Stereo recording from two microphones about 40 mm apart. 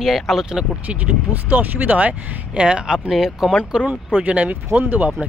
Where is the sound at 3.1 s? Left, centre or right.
Centre.